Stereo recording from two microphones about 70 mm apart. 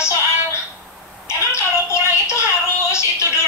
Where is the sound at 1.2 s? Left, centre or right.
Left.